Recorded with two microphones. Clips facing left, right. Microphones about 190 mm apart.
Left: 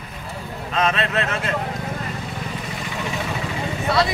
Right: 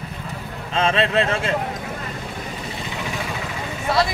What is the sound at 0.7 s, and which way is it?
Speech, 30° right (ahead or behind).